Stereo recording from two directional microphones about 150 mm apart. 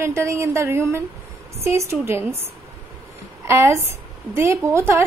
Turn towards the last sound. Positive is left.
turn(degrees=-15)  # may be behind; listen again after turning